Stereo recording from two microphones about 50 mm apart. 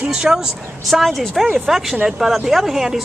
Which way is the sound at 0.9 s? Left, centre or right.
Centre.